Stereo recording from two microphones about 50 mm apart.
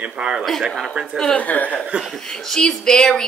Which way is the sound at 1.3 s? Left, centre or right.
Left.